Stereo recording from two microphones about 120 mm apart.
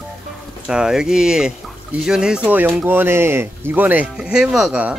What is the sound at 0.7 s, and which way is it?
Speech, 5° right (ahead or behind).